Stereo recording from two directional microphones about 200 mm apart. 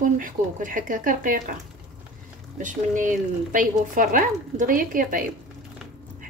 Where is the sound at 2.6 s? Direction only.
40° right (ahead or behind).